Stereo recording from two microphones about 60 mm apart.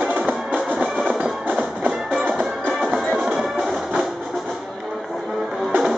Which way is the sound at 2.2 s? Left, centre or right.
Centre.